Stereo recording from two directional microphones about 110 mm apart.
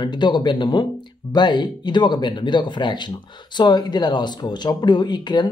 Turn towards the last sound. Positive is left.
turn(degrees=40)  # may be behind; listen again after turning